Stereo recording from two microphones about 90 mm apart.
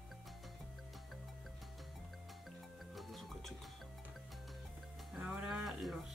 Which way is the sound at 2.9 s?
Centre (ahead or behind).